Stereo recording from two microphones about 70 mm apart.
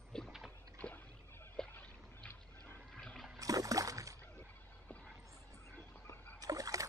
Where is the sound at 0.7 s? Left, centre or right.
Left.